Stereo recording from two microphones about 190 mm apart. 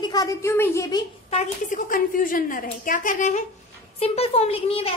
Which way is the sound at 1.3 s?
40° left (ahead or behind).